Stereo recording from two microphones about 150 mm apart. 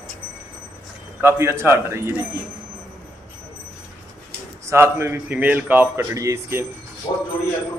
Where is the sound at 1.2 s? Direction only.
15° right (ahead or behind).